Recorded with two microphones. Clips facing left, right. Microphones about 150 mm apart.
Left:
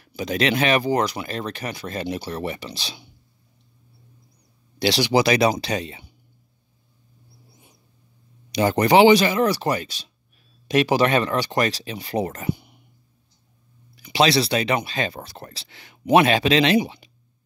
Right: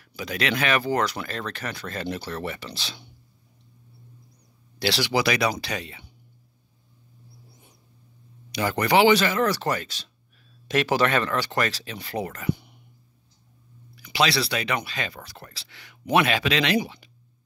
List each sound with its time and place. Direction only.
0.0 s speech: 20° left (ahead or behind)
4.7 s speech: 15° left (ahead or behind)
8.5 s speech: 20° left (ahead or behind)
13.9 s speech: 25° left (ahead or behind)